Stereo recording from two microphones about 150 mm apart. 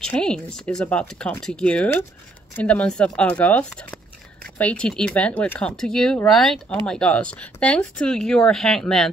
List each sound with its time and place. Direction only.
0.0 s speech: 5° left (ahead or behind)